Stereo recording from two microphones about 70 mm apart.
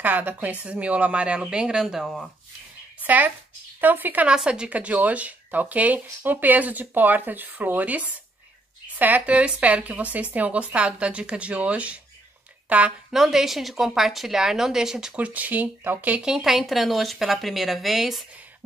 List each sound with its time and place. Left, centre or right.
0.0 s speech: right; by 2.0 s centre
2.0 s speech: centre
3.0 s a sound: right
3.8 s speech: right
4.3 s speech: centre
13.1 s speech: centre
15.1 s speech: right
16.2 s speech: centre